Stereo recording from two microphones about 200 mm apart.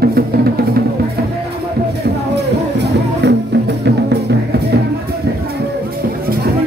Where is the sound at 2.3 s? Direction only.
60° right (ahead or behind).